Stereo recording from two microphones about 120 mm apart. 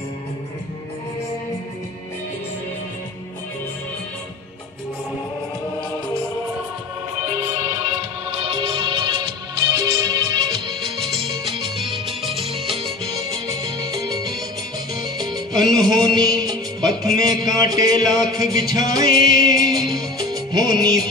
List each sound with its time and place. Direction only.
7.8 s music: 55° right (ahead or behind)
13.5 s music: 35° right (ahead or behind)